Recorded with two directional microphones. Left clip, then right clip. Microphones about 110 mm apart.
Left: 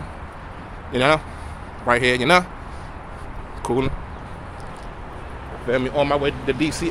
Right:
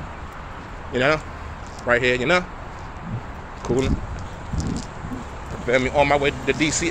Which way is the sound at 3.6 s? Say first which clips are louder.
Left 1 dB; 30° left (ahead or behind).